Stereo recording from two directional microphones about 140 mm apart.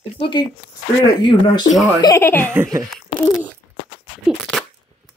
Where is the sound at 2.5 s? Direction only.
20° right (ahead or behind).